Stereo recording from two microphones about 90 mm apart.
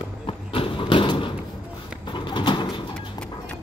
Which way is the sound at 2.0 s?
60° left (ahead or behind).